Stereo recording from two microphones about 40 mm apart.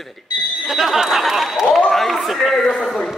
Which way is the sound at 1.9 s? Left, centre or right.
Centre.